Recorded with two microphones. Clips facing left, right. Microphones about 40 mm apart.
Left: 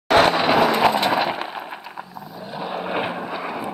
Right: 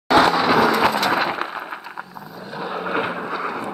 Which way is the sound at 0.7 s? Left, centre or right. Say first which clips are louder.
Even; centre.